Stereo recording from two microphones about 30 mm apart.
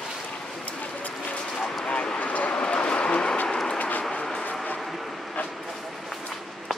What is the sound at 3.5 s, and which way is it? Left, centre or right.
Train, left.